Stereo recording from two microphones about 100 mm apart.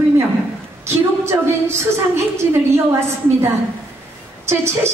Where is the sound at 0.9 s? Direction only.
25° right (ahead or behind).